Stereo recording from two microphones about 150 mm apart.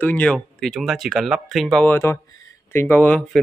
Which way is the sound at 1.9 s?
15° left (ahead or behind).